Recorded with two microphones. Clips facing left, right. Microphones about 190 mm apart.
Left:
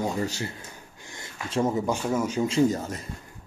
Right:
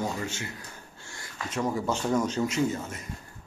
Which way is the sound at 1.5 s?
25° left (ahead or behind).